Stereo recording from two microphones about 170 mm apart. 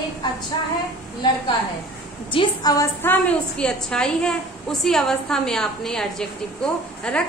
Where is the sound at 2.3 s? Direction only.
25° left (ahead or behind).